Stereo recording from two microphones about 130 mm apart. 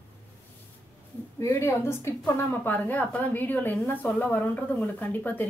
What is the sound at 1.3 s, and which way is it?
A woman's voice, 20° left (ahead or behind).